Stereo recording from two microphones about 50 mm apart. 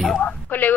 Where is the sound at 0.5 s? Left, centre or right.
Left.